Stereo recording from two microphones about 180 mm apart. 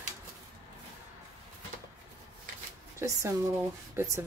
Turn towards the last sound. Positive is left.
turn(degrees=-15)  # may be behind; listen again after turning